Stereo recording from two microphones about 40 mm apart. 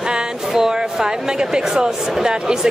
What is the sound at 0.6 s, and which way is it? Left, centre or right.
Speech, centre.